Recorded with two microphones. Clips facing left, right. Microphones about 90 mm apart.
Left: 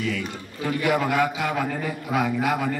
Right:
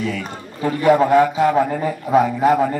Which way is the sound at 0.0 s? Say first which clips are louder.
Right 3 dB; 35° right (ahead or behind).